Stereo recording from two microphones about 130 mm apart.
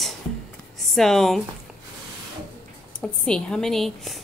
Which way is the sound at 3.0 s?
5° left (ahead or behind).